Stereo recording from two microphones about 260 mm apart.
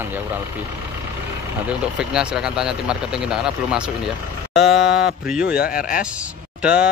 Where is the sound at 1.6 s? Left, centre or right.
Centre.